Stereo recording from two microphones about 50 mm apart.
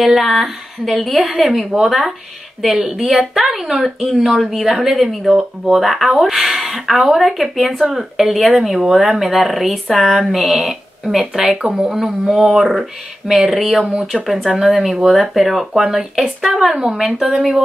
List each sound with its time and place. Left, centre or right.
0.0 s speech: centre
11.5 s speech: centre